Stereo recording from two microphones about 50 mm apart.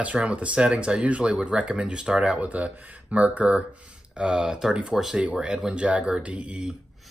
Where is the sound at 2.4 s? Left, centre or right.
Right.